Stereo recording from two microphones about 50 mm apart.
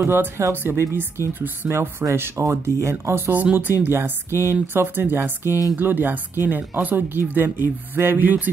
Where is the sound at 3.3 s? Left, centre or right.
Right.